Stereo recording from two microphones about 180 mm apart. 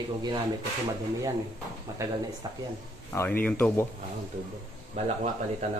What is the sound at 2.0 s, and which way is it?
Speech, 15° right (ahead or behind).